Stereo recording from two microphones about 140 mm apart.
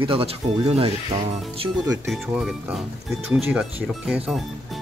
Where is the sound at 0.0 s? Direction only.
40° right (ahead or behind).